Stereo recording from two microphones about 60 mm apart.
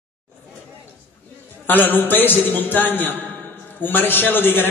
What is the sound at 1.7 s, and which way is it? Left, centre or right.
A man's voice, left.